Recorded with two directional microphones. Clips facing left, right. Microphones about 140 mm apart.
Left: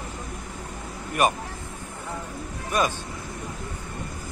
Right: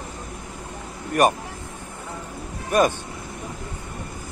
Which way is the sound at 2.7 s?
50° right (ahead or behind).